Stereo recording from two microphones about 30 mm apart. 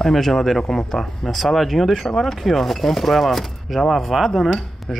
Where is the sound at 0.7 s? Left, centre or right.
Centre.